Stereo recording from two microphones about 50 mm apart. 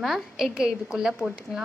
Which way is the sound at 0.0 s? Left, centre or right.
Centre.